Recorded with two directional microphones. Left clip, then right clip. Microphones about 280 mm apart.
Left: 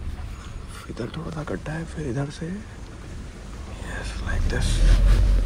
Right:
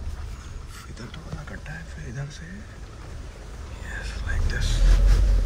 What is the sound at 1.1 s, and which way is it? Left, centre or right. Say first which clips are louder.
Speech: left 8 dB; centre.